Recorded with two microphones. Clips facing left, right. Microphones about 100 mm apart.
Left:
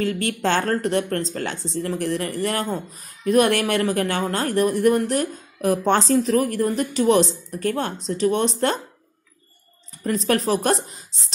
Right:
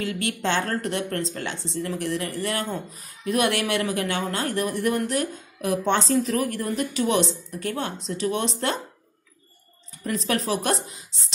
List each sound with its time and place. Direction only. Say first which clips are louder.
0.0 s speech: left 4 dB; 40° left (ahead or behind)
10.0 s speech: left 4 dB; 45° left (ahead or behind)